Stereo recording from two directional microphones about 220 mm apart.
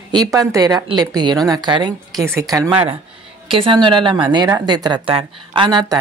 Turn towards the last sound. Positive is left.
turn(degrees=-20)  # may be behind; listen again after turning